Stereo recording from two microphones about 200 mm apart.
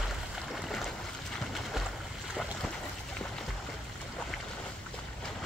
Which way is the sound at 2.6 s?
5° left (ahead or behind).